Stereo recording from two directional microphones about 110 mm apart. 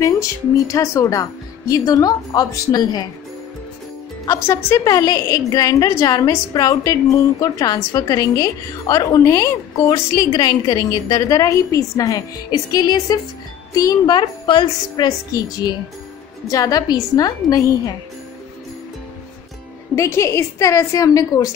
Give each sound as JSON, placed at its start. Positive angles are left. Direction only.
{"t": 0.0, "sound": "a woman's voice", "side_deg": 30}
{"t": 4.3, "sound": "a woman's voice", "side_deg": 25}
{"t": 15.0, "sound": "a woman's voice", "side_deg": 35}
{"t": 20.0, "sound": "a woman's voice", "side_deg": 25}